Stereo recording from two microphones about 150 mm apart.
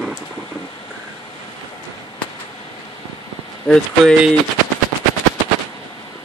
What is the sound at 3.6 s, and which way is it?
Speech, 5° left (ahead or behind).